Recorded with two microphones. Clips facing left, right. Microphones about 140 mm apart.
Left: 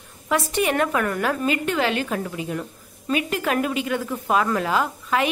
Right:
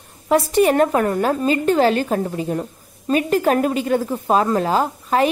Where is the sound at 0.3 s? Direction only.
35° right (ahead or behind).